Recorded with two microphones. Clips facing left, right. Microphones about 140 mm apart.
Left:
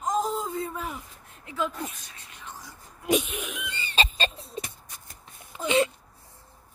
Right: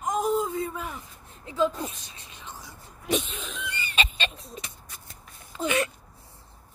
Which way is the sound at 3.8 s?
35° left (ahead or behind).